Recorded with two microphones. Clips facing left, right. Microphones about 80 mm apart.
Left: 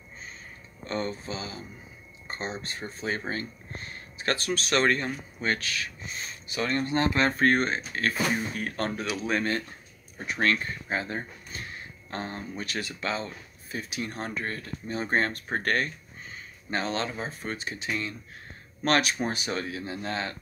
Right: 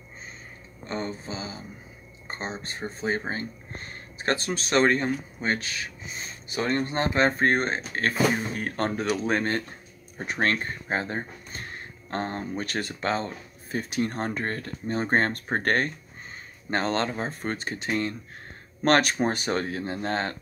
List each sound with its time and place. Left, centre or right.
0.8 s speech: right